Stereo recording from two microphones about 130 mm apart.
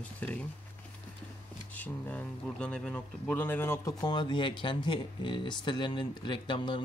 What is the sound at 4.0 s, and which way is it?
Speech, 35° left (ahead or behind).